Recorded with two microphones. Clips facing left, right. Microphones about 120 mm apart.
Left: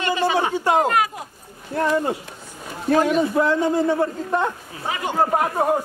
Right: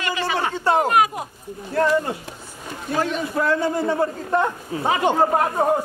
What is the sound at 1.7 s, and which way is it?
Speech, 20° left (ahead or behind).